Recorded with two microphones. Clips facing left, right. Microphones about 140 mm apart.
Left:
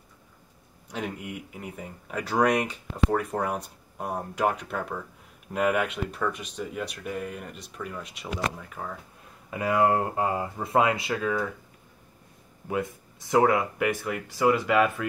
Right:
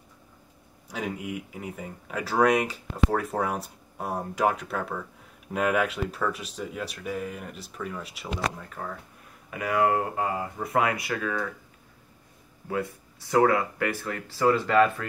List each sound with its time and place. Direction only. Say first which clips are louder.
0.8 s speech: right 1 dB; 5° right (ahead or behind)
9.5 s speech: left 1 dB; 25° left (ahead or behind)
12.6 s speech: left 1 dB; 20° left (ahead or behind)